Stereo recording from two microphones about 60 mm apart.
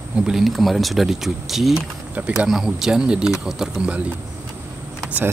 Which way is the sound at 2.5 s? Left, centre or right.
Centre.